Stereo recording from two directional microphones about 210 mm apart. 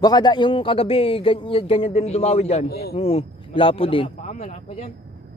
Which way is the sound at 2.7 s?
50° left (ahead or behind).